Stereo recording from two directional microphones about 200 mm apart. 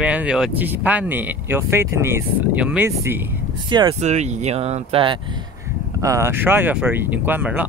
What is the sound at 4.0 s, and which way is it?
Speech, 35° right (ahead or behind).